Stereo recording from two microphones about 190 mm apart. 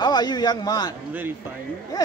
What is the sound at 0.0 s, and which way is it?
Speech, 20° left (ahead or behind).